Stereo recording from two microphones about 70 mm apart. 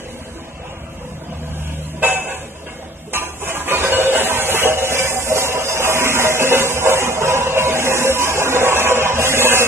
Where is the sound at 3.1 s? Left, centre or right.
Right.